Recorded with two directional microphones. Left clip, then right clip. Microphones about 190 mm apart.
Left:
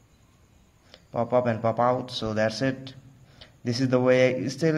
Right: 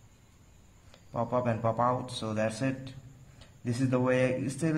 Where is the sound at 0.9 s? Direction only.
25° left (ahead or behind).